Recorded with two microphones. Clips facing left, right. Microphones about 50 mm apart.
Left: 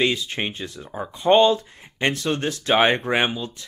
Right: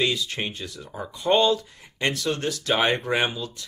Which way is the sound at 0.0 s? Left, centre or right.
Left.